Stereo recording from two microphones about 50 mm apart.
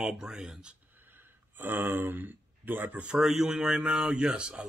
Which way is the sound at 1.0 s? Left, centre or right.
Right.